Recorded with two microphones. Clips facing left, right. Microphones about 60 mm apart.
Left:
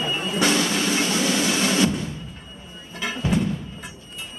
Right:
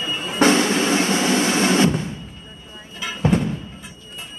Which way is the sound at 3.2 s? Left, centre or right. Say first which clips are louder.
Right 5 dB; right.